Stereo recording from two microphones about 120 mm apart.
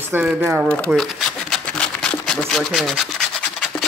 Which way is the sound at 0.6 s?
10° left (ahead or behind).